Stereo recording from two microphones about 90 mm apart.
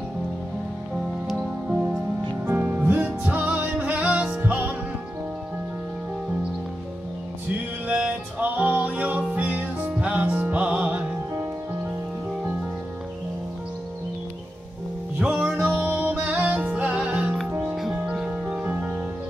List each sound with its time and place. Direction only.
2.4 s music: 25° right (ahead or behind)
7.9 s music: 15° right (ahead or behind)
15.1 s music: 10° right (ahead or behind)
17.9 s music: 10° right (ahead or behind)